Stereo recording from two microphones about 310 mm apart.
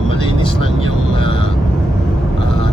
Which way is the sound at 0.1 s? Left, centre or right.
Centre.